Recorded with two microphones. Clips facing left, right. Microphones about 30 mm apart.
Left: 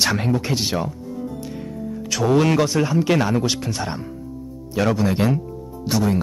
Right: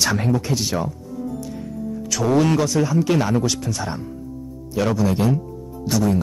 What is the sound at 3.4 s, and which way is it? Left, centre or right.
Speech, left.